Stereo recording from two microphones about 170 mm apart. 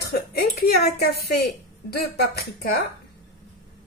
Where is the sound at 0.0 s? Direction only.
65° left (ahead or behind).